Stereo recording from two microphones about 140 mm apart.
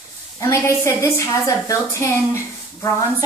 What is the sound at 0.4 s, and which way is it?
A woman's voice, 20° left (ahead or behind).